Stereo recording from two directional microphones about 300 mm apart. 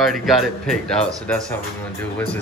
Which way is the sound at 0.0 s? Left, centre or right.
Centre.